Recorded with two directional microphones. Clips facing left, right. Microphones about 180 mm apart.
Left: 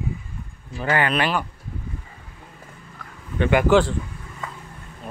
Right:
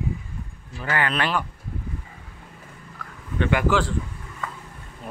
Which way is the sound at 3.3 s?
20° left (ahead or behind).